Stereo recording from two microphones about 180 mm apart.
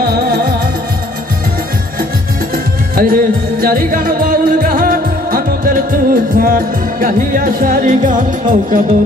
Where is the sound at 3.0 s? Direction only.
55° right (ahead or behind).